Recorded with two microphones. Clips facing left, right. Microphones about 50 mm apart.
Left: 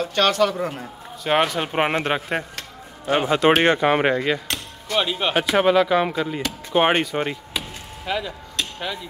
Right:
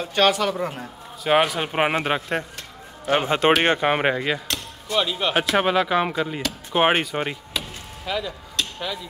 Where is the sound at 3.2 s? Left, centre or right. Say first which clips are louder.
Left 3 dB; right.